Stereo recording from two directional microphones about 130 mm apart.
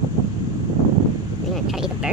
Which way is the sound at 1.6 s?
5° right (ahead or behind).